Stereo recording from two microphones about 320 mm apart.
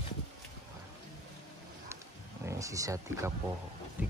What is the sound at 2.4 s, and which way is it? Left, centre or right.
Speech, centre.